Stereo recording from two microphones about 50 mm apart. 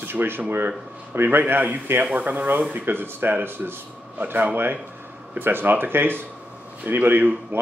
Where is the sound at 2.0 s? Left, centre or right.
Right.